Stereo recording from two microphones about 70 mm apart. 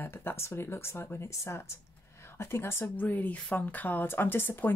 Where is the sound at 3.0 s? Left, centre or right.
Left.